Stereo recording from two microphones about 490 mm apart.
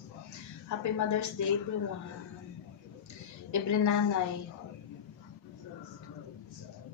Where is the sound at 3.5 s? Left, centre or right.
Left.